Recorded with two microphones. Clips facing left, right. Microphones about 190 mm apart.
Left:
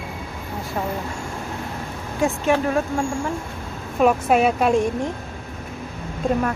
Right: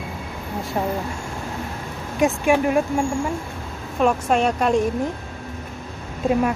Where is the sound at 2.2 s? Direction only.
15° right (ahead or behind).